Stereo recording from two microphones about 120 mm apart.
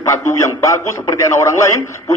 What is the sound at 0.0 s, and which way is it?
A man's voice, 25° left (ahead or behind).